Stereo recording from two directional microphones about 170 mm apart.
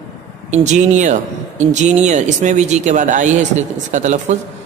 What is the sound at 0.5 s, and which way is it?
Speech, 45° right (ahead or behind).